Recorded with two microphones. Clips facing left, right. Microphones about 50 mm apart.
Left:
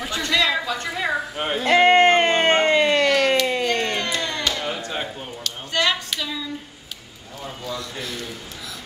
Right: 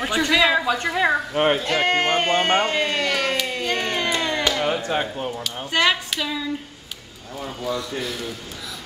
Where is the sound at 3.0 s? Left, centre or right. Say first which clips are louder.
Left 4 dB; centre.